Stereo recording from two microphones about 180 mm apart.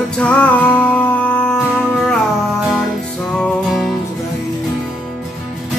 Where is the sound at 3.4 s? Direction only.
Centre (ahead or behind).